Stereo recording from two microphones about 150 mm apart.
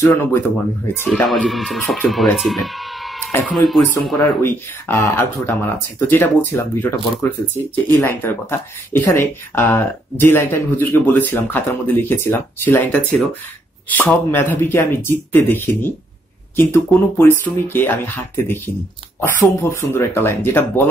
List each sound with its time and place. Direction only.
1.1 s speech: 5° left (ahead or behind)
3.3 s speech: 15° left (ahead or behind)
3.5 s speech: centre (ahead or behind)
3.8 s speech: 10° left (ahead or behind)
19.6 s speech: 15° left (ahead or behind)